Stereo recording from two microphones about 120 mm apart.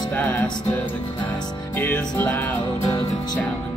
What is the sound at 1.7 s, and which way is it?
Music, 15° left (ahead or behind).